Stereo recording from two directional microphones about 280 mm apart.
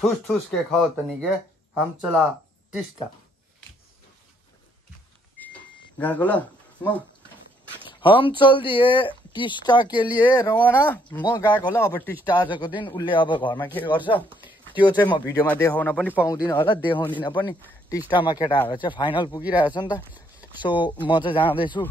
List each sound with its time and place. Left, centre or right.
0.3 s speech: centre
5.5 s a sound: centre
8.0 s speech: centre
16.4 s speech: centre
20.0 s a sound: centre
21.1 s speech: centre